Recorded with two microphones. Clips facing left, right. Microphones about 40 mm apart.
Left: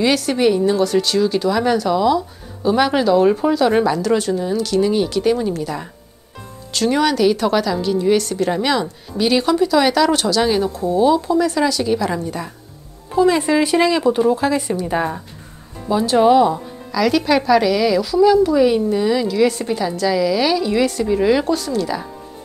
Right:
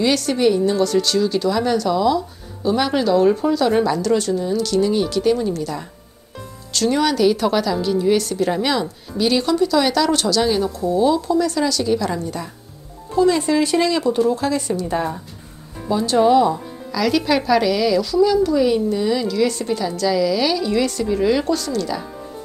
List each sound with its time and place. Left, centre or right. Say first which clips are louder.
0.0 s a woman's voice: left 1 dB; centre
16.9 s a woman's voice: left 2 dB; centre